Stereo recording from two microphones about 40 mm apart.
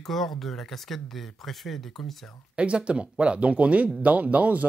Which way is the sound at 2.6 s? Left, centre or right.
Right.